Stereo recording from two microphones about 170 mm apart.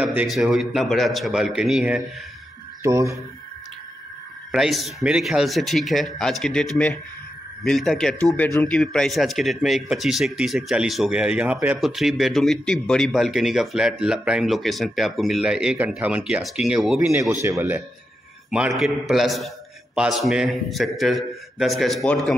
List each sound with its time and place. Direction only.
0.0 s speech: 10° right (ahead or behind)
2.8 s speech: 20° right (ahead or behind)
4.5 s speech: centre (ahead or behind)
17.1 s speech: 15° right (ahead or behind)
18.5 s speech: 5° right (ahead or behind)